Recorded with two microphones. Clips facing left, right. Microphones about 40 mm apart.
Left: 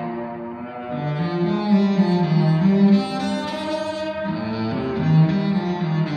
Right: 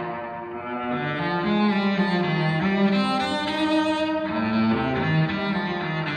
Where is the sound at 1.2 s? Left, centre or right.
Right.